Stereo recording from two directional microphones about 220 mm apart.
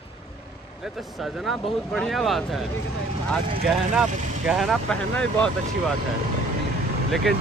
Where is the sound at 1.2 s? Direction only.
Centre (ahead or behind).